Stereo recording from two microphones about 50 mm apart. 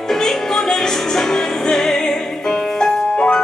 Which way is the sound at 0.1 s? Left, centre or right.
Centre.